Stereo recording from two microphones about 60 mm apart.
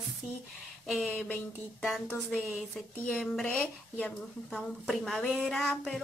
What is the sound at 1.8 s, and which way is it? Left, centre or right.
Speech, centre.